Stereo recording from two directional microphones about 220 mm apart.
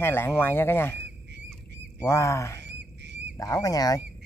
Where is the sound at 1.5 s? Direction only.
10° left (ahead or behind).